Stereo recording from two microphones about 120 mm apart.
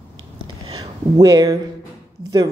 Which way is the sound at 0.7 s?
30° right (ahead or behind).